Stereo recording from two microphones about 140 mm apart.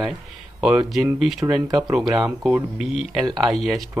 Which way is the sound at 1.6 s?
30° right (ahead or behind).